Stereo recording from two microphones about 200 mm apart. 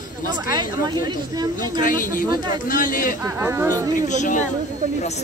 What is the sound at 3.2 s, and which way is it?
Speech, 15° right (ahead or behind).